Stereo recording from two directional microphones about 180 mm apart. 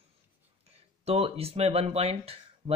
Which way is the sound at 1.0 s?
35° right (ahead or behind).